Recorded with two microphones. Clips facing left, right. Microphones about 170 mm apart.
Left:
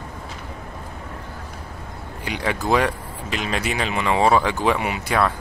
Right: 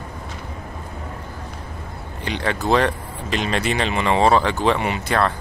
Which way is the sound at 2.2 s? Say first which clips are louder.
Right 1 dB; 10° left (ahead or behind).